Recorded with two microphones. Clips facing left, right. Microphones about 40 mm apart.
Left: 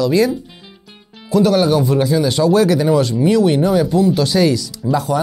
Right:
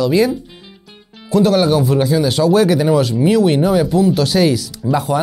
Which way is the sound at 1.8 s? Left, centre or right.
Centre.